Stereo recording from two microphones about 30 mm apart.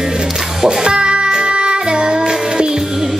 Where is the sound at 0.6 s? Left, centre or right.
Right.